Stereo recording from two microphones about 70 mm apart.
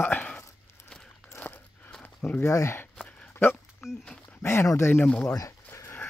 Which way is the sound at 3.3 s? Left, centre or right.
Left.